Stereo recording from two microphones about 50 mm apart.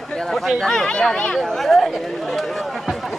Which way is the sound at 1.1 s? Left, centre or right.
Left.